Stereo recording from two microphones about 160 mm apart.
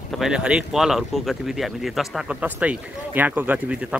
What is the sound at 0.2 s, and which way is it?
Speech, 5° right (ahead or behind).